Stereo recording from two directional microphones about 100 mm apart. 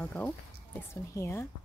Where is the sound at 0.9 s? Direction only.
30° left (ahead or behind).